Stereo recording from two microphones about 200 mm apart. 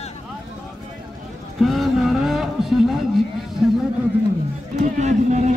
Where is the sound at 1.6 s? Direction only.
Centre (ahead or behind).